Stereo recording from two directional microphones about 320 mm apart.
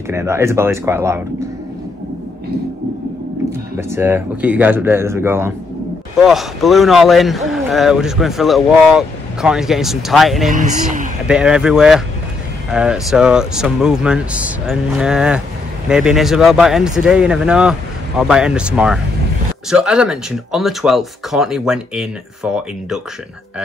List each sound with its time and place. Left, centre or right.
0.1 s speech: centre
3.7 s speech: centre
10.5 s speech: right
11.2 s speech: centre